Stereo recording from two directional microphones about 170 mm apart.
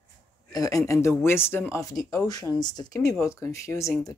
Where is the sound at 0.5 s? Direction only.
20° left (ahead or behind).